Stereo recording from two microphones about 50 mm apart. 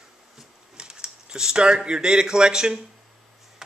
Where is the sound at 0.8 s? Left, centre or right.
Centre.